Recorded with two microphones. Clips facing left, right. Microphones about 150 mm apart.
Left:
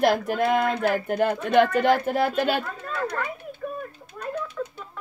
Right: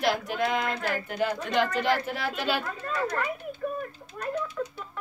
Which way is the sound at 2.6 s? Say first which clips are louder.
Even; centre (ahead or behind).